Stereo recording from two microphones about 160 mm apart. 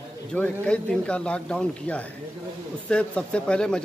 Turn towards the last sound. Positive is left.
turn(degrees=5)  # may be behind; listen again after turning